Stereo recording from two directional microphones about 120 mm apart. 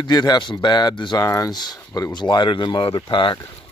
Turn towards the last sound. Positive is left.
turn(degrees=40)  # may be behind; listen again after turning